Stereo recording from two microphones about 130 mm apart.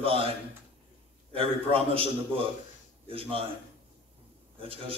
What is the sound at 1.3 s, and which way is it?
A man's voice, 45° right (ahead or behind).